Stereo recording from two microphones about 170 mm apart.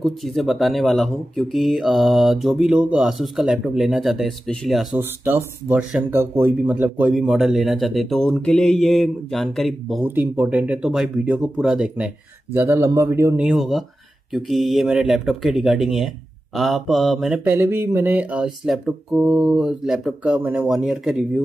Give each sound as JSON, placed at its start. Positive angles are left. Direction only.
{"t": 0.0, "sound": "speech", "side_deg": 0}
{"t": 4.9, "sound": "speech", "side_deg": -10}
{"t": 10.0, "sound": "speech", "side_deg": -10}
{"t": 12.5, "sound": "speech", "side_deg": -15}
{"t": 13.5, "sound": "speech", "side_deg": 0}
{"t": 17.6, "sound": "speech", "side_deg": -15}